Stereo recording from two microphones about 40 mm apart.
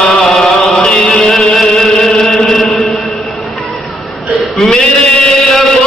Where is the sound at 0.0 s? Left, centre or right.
Centre.